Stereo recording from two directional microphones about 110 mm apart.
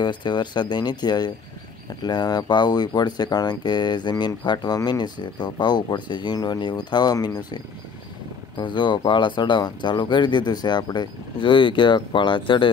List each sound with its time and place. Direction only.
0.0 s speech: 45° left (ahead or behind)